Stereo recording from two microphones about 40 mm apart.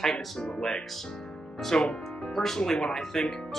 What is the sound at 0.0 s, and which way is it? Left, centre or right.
Speech, centre.